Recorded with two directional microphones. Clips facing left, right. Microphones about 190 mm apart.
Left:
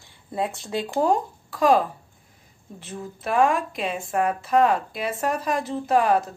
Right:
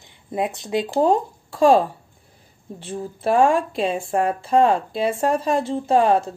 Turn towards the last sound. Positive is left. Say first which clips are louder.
# right 3 dB
turn(degrees=-25)  # may be behind; listen again after turning